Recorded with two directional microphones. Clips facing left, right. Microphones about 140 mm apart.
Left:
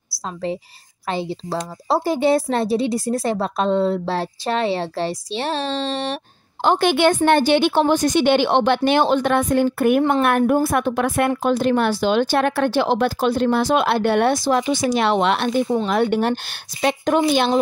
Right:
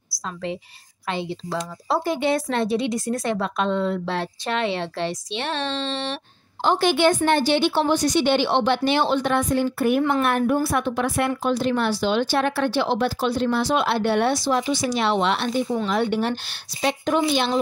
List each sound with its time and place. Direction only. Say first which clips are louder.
1.0 s a woman's voice: left 3 dB; 35° left (ahead or behind)
6.6 s a woman's voice: left 2 dB; 55° left (ahead or behind)